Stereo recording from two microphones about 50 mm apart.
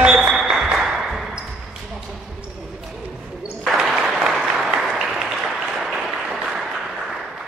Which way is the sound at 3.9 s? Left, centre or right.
Centre.